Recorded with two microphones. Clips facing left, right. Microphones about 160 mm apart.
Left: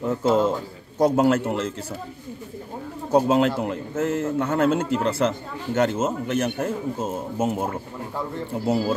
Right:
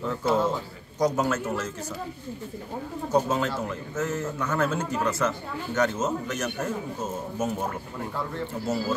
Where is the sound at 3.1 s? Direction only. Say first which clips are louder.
Left 6 dB; 60° left (ahead or behind).